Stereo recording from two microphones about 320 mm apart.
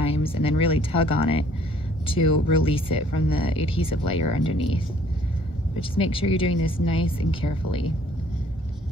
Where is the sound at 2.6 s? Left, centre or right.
Centre.